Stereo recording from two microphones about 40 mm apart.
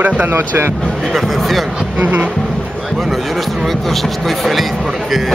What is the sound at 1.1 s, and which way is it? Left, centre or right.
Speech, centre.